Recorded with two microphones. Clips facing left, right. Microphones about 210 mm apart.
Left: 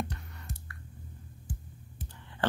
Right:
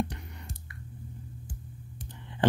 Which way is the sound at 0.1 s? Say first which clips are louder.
Right 1 dB; 20° right (ahead or behind).